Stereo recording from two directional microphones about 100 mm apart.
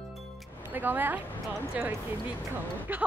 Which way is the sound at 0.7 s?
20° right (ahead or behind).